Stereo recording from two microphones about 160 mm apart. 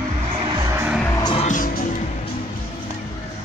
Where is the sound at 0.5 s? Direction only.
20° right (ahead or behind).